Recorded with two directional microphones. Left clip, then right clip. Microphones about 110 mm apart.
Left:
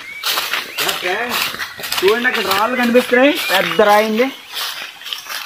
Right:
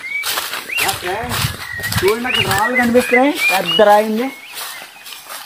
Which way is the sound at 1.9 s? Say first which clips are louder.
Left 2 dB; 5° right (ahead or behind).